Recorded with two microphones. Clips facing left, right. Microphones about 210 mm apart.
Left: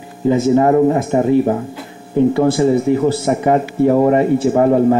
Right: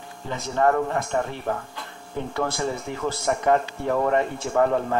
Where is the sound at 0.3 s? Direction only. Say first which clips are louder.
Left 13 dB; 5° left (ahead or behind).